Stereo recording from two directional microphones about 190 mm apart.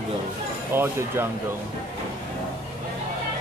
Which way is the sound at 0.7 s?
10° right (ahead or behind).